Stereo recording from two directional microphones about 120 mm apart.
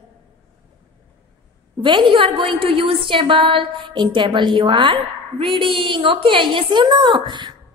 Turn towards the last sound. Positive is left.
turn(degrees=-40)  # may be behind; listen again after turning